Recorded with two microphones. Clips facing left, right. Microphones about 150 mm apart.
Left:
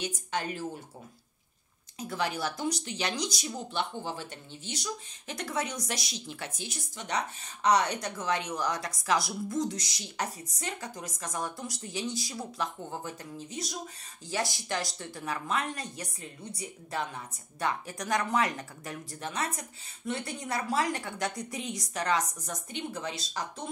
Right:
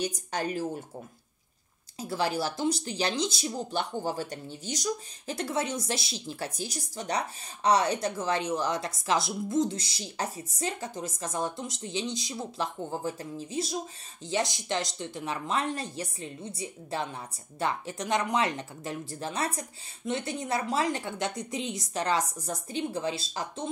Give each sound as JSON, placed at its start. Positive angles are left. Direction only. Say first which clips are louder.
{"t": 0.0, "sound": "speech", "louder": "right 3 dB", "side_deg": -40}
{"t": 2.0, "sound": "speech", "louder": "right 3 dB", "side_deg": -30}
{"t": 3.4, "sound": "speech", "louder": "right 2 dB", "side_deg": -40}